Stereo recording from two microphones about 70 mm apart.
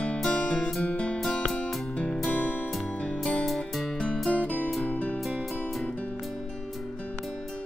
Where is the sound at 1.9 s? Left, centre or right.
Centre.